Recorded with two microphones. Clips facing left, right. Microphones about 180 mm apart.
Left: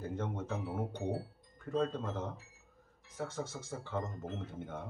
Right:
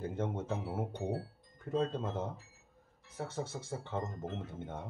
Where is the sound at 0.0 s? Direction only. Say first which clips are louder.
Right 2 dB; 25° right (ahead or behind).